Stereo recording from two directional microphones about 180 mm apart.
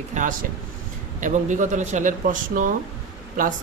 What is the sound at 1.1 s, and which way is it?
Speech, 45° right (ahead or behind).